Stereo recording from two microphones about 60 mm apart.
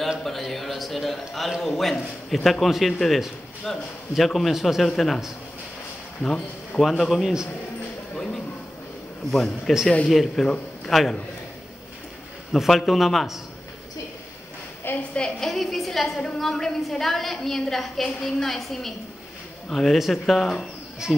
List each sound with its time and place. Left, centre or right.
0.2 s a man's voice: centre
6.8 s a man's voice: centre
9.3 s a man's voice: centre
12.5 s a man's voice: centre
15.0 s a woman's voice: centre
15.4 s a man's voice: centre